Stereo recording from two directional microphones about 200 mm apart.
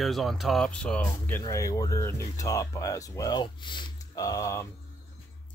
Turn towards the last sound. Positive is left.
turn(degrees=15)  # may be behind; listen again after turning